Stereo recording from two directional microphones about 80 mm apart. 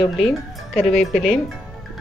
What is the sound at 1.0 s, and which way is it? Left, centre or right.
Speech, centre.